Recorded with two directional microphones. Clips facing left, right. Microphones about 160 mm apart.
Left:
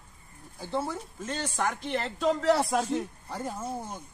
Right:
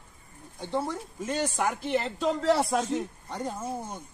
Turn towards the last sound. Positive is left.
turn(degrees=5)  # may be behind; listen again after turning